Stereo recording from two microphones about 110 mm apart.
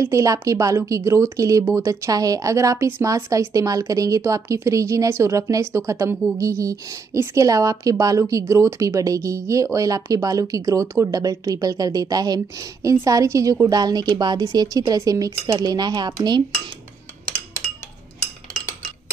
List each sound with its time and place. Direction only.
0.0 s speech: 30° right (ahead or behind)